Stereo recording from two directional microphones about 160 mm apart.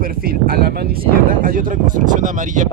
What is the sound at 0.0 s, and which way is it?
Speech, 65° right (ahead or behind).